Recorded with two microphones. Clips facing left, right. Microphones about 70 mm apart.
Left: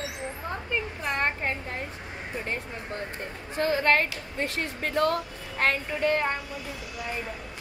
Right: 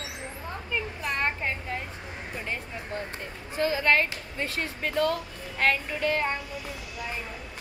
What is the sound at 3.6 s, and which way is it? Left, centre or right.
A woman's voice, left.